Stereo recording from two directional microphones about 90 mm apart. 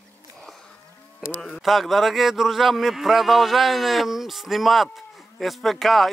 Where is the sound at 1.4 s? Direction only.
5° left (ahead or behind).